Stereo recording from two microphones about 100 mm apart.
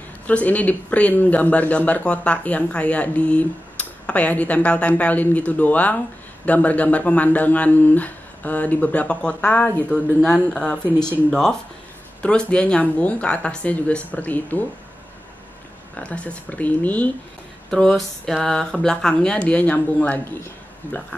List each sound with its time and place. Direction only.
0.3 s speech: 15° left (ahead or behind)
16.0 s speech: 15° left (ahead or behind)
17.6 s speech: 5° left (ahead or behind)